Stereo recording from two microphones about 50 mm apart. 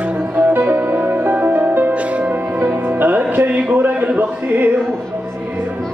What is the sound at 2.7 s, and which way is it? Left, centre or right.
Music, right.